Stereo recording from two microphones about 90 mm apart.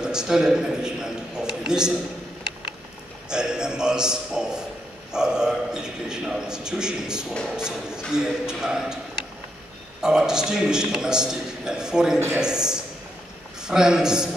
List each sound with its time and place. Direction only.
0.0 s a man's voice: 5° right (ahead or behind)
3.3 s a man's voice: 10° right (ahead or behind)
10.0 s a man's voice: 5° right (ahead or behind)